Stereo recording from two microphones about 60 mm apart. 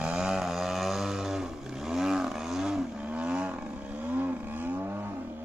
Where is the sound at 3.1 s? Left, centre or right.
Centre.